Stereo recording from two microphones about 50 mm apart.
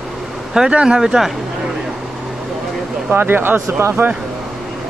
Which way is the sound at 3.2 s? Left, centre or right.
Right.